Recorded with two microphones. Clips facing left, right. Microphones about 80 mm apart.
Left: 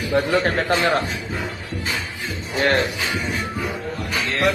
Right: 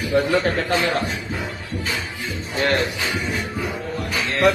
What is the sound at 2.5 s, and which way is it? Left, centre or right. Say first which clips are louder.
Speech: left 2 dB; left.